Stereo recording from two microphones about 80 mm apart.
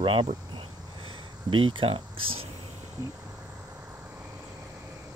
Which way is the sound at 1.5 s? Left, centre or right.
Right.